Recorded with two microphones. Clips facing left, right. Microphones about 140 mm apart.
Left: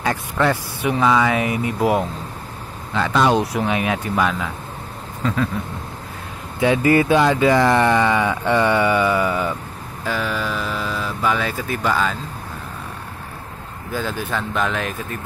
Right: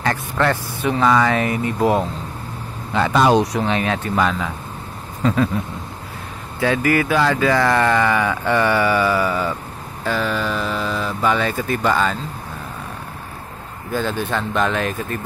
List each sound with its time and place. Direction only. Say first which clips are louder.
0.0 s speech: even; 10° left (ahead or behind)
2.9 s speech: right 2 dB; 10° right (ahead or behind)
3.3 s speech: right 2 dB; 10° left (ahead or behind)
6.6 s speech: left 2 dB; 20° left (ahead or behind)
10.0 s speech: right 2 dB; 10° left (ahead or behind)
13.9 s speech: right 3 dB; 5° left (ahead or behind)